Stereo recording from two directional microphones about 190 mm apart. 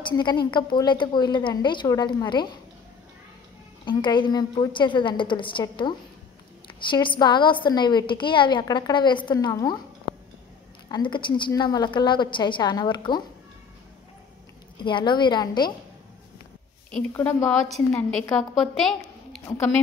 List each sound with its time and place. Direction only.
0.0 s a woman's voice: 25° left (ahead or behind)
3.8 s a woman's voice: 25° left (ahead or behind)
10.9 s a woman's voice: 25° left (ahead or behind)
14.8 s a woman's voice: 25° left (ahead or behind)
16.9 s a woman's voice: 10° left (ahead or behind)
19.4 s a woman's voice: 15° left (ahead or behind)